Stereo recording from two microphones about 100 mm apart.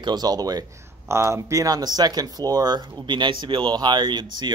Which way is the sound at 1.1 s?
30° right (ahead or behind).